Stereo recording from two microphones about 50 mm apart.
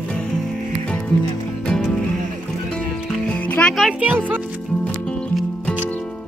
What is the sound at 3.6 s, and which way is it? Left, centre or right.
Music, left.